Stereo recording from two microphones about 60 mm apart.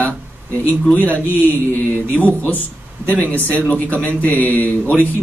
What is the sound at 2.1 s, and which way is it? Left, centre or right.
Speech, left.